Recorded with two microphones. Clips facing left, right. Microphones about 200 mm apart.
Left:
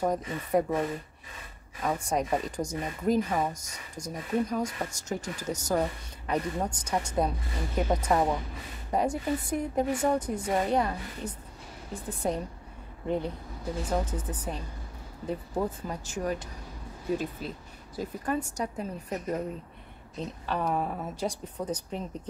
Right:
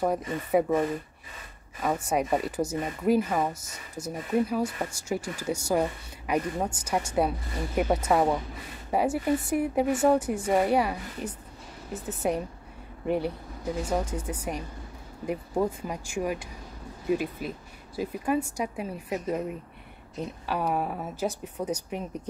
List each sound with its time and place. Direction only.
0.0 s speech: 10° right (ahead or behind)
2.0 s speech: 10° right (ahead or behind)